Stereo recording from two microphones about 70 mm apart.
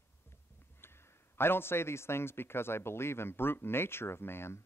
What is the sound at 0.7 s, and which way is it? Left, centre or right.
A man's voice, left.